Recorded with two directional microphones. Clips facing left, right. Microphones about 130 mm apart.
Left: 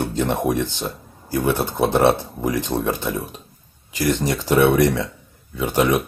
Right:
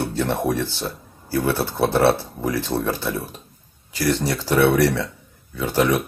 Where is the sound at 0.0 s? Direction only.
15° left (ahead or behind).